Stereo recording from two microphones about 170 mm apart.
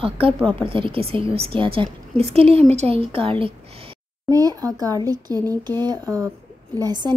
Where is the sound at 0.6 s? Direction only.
30° right (ahead or behind).